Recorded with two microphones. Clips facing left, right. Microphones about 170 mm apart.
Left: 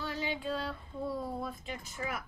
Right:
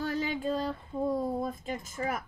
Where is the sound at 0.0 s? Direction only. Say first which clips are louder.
Right 5 dB; 45° right (ahead or behind).